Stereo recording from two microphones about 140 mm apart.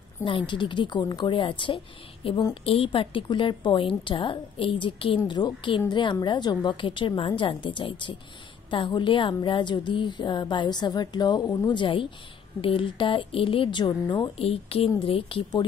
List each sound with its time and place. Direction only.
0.2 s a woman's voice: 35° left (ahead or behind)
14.3 s a woman's voice: 45° left (ahead or behind)